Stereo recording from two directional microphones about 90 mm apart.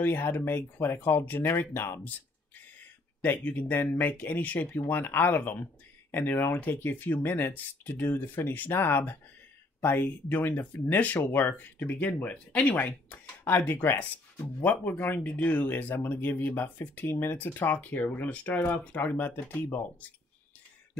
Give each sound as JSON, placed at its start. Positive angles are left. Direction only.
{"t": 0.0, "sound": "speech", "side_deg": 20}
{"t": 3.2, "sound": "speech", "side_deg": 20}